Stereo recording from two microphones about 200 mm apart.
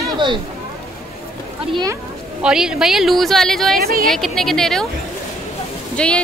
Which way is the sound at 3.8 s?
50° right (ahead or behind).